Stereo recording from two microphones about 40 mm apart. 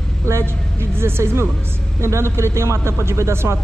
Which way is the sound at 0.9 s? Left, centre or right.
Right.